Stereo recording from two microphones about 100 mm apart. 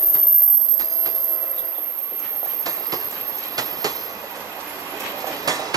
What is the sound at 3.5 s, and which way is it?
Train, 40° right (ahead or behind).